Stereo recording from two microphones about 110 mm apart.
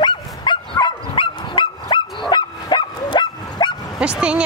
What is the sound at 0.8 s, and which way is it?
Honk, 50° left (ahead or behind).